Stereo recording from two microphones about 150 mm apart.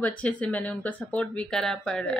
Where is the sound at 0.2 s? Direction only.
10° left (ahead or behind).